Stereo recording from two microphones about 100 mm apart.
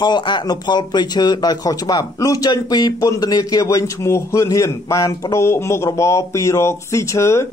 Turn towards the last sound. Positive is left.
turn(degrees=30)  # may be behind; listen again after turning